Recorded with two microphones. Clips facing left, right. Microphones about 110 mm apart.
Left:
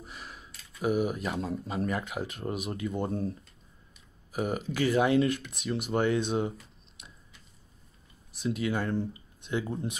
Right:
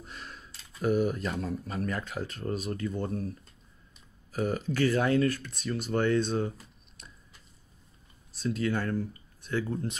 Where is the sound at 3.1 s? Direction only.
30° left (ahead or behind).